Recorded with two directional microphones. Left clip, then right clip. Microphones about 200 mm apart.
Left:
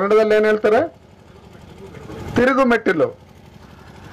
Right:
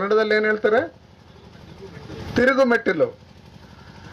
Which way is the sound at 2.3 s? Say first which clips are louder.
Left 2 dB; 45° left (ahead or behind).